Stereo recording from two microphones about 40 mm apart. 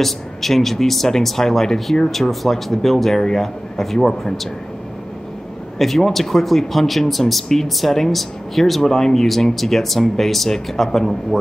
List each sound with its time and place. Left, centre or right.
0.0 s speech: centre
5.8 s speech: centre